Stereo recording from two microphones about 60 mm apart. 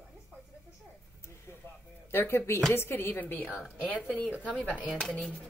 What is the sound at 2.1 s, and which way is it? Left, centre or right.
Speech, left.